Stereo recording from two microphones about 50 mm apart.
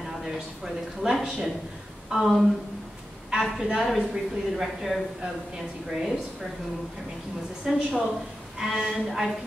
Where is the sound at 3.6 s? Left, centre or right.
Centre.